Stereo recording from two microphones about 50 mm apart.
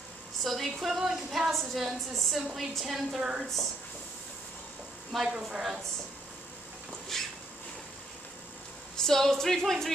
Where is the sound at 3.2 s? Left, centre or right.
Centre.